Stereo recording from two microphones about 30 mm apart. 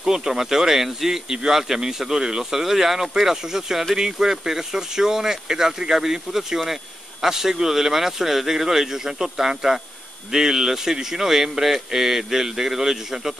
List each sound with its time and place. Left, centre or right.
0.0 s speech: centre